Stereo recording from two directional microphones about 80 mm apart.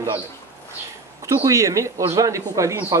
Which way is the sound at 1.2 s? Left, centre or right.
Right.